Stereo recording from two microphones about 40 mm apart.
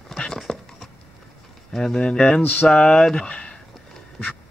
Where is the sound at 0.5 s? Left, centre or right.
Centre.